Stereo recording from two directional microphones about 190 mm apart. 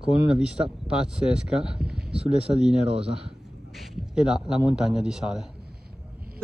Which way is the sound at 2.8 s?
30° right (ahead or behind).